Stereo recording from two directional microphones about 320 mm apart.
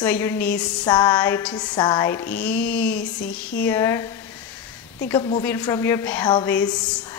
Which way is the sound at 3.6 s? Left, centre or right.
Centre.